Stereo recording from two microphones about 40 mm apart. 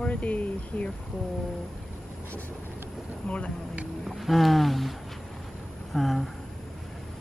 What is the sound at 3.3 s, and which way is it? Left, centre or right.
Speech, left.